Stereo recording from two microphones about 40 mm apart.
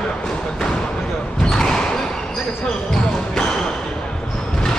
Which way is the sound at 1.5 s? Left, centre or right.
Centre.